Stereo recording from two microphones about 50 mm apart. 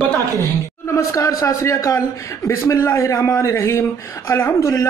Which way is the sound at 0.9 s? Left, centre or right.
Left.